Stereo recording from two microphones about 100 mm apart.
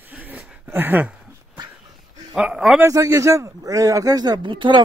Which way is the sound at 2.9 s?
35° right (ahead or behind).